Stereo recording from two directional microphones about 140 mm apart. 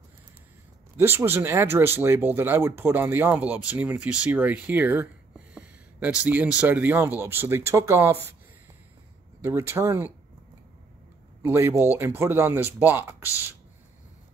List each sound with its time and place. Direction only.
0.9 s speech: 15° right (ahead or behind)
9.4 s speech: 20° right (ahead or behind)
11.4 s speech: 20° right (ahead or behind)